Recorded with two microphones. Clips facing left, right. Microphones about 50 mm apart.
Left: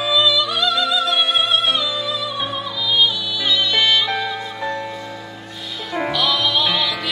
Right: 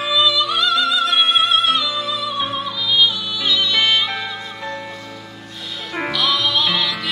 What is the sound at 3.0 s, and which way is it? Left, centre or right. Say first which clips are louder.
Music: even; right.